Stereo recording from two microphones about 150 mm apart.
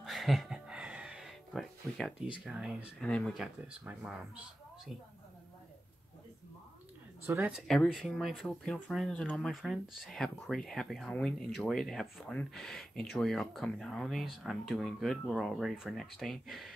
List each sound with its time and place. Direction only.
0.0 s a sound: centre (ahead or behind)
2.4 s speech: 5° right (ahead or behind)
3.0 s speech: 5° left (ahead or behind)
3.3 s speech: 5° right (ahead or behind)
7.2 s speech: 15° right (ahead or behind)
7.5 s speech: 5° left (ahead or behind)